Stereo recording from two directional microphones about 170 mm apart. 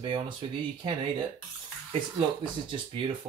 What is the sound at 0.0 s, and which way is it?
Speech, 30° right (ahead or behind).